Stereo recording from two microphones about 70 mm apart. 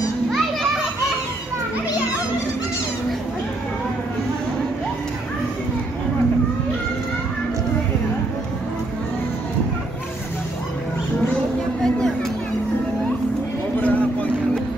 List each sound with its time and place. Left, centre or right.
0.3 s children playing: centre
13.7 s vehicle: left